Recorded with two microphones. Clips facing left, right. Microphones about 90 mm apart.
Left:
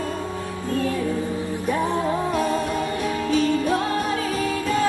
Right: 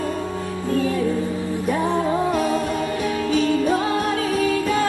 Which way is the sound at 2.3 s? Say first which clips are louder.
Right 1 dB; centre (ahead or behind).